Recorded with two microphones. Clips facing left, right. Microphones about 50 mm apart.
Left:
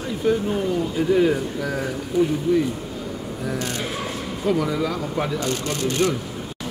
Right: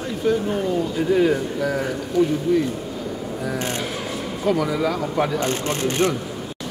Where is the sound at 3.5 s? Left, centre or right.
Right.